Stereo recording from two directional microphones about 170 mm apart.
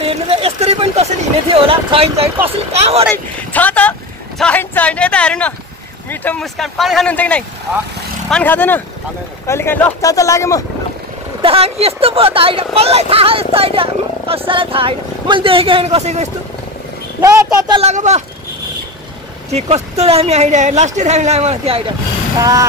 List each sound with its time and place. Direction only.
0.0 s a sound: 35° right (ahead or behind)
1.5 s speech: 35° right (ahead or behind)
3.1 s speech: 10° left (ahead or behind)
11.4 s speech: 35° right (ahead or behind)
17.2 s speech: 25° right (ahead or behind)
17.8 s speech: 40° right (ahead or behind)
19.5 s speech: 40° right (ahead or behind)
22.4 s speech: 20° right (ahead or behind)